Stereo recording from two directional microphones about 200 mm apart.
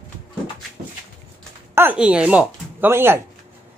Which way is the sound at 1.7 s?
10° right (ahead or behind).